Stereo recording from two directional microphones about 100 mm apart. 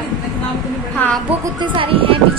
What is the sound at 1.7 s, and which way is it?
Speech, 65° right (ahead or behind).